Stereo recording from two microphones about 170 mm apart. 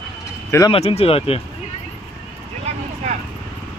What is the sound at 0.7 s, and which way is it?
Speech, 35° left (ahead or behind).